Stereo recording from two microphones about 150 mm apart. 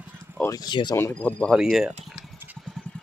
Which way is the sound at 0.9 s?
15° left (ahead or behind).